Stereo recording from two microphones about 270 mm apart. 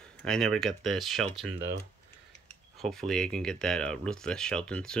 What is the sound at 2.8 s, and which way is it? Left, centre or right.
Speech, centre.